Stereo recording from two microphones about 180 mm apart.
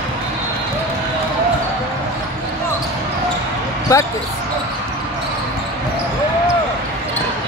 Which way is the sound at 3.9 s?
20° left (ahead or behind).